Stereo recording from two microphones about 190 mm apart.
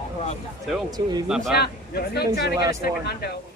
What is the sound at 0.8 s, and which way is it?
Speech, 20° right (ahead or behind).